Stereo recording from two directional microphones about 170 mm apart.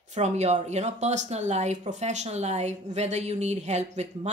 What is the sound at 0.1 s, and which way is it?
Speech, 40° right (ahead or behind).